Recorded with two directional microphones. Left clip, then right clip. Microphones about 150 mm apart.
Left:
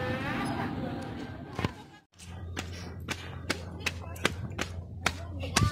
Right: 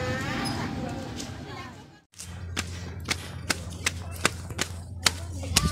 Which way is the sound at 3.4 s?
Centre (ahead or behind).